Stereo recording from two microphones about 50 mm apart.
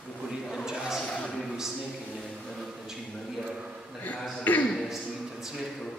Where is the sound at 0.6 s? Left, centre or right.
Centre.